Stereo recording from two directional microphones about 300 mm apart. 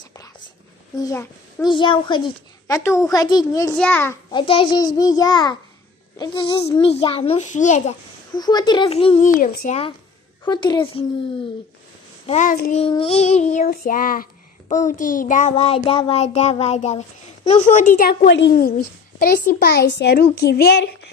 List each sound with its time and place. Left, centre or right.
0.9 s a child's voice: centre
6.1 s child singing: centre
8.4 s child singing: centre
10.4 s a child's voice: centre
12.3 s child singing: left
12.8 s child singing: centre; by 18.8 s left
19.1 s speech: left